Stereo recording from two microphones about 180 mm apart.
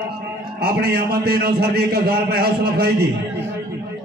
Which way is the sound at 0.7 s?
60° right (ahead or behind).